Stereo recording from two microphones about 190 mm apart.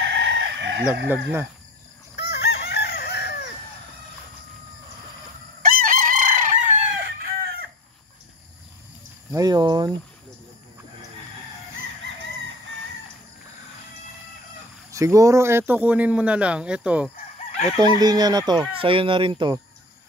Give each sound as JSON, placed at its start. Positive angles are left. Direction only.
{"t": 0.0, "sound": "chicken", "side_deg": -65}
{"t": 1.0, "sound": "a man's voice", "side_deg": -10}
{"t": 2.1, "sound": "chicken", "side_deg": 65}
{"t": 5.6, "sound": "chicken", "side_deg": -45}
{"t": 9.3, "sound": "speech", "side_deg": -20}
{"t": 14.9, "sound": "a man's voice", "side_deg": -15}
{"t": 18.0, "sound": "speech", "side_deg": -20}